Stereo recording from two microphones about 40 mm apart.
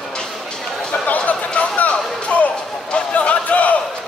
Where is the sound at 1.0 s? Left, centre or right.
Left.